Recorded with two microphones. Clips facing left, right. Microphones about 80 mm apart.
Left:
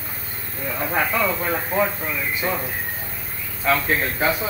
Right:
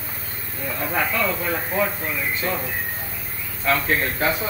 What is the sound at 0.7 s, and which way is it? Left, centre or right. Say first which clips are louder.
Speech: left 2 dB; centre.